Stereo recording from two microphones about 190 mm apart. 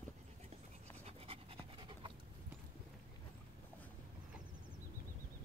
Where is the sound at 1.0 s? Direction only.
30° right (ahead or behind).